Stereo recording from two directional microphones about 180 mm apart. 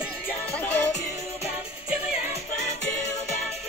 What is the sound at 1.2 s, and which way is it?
Music, 35° left (ahead or behind).